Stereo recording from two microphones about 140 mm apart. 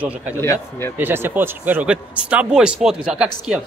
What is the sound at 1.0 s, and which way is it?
Speech, 15° right (ahead or behind).